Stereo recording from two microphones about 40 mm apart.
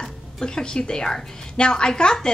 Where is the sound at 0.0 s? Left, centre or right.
Centre.